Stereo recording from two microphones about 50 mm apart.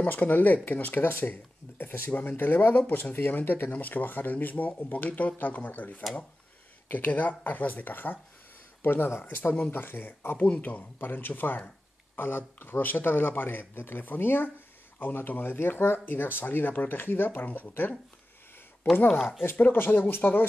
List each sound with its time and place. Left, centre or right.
0.0 s speech: left
2.2 s speech: left
10.8 s speech: left
17.5 s speech: left
19.0 s speech: centre
19.5 s speech: left
19.8 s speech: left